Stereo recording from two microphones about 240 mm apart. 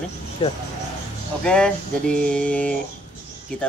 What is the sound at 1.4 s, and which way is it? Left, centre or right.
Speech, centre.